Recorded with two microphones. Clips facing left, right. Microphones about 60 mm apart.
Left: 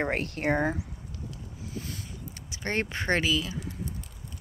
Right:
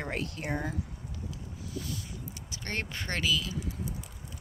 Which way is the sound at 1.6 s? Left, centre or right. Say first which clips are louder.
Even; left.